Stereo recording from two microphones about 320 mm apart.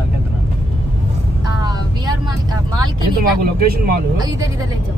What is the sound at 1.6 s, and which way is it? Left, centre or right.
Vehicle, centre.